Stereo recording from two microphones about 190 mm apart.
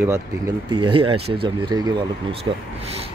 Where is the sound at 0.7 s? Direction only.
25° right (ahead or behind).